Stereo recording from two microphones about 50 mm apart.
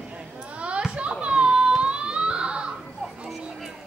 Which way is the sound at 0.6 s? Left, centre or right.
Right.